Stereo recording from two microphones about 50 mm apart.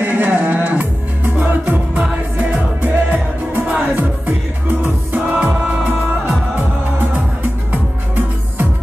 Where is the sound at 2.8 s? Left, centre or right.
Right.